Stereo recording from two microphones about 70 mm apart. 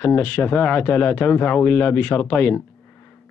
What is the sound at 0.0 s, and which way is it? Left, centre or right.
Speech, left.